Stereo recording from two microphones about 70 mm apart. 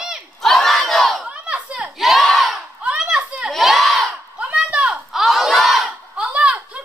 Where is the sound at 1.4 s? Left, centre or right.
Centre.